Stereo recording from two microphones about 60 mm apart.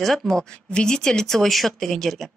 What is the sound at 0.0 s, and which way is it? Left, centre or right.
Speech, centre.